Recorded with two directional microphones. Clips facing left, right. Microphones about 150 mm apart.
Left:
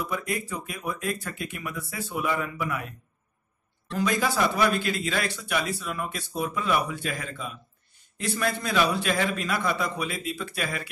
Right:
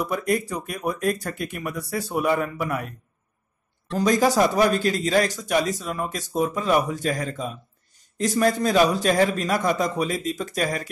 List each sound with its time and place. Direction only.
0.0 s speech: 40° right (ahead or behind)
3.9 s speech: 40° right (ahead or behind)